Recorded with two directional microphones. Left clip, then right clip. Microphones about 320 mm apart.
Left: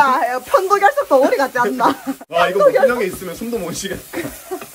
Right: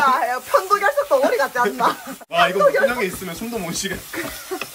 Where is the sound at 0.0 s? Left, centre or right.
Left.